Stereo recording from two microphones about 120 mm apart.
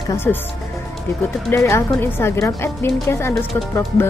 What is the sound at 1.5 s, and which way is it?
Speech, 25° left (ahead or behind).